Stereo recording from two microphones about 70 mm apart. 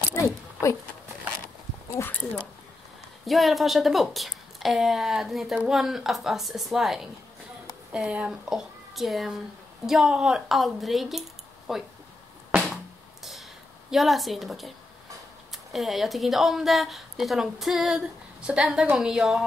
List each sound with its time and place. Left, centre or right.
0.1 s a sound: left
2.0 s a sound: left
3.3 s a woman's voice: centre
7.9 s speech: centre
8.5 s a woman's voice: centre
13.8 s a woman's voice: centre